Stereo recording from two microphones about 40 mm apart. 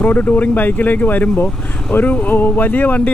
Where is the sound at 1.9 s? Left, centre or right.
Left.